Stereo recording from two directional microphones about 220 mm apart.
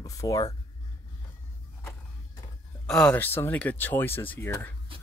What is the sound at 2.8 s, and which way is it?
Speech, 5° left (ahead or behind).